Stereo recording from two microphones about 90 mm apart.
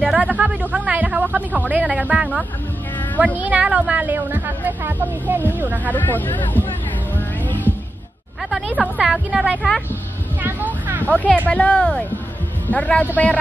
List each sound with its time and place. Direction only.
0.0 s a woman's voice: 10° right (ahead or behind)
5.9 s speech: 20° left (ahead or behind)
7.2 s music: 20° left (ahead or behind)
8.7 s speech: 10° right (ahead or behind)
10.4 s a sound: 20° right (ahead or behind)
11.1 s speech: 15° left (ahead or behind)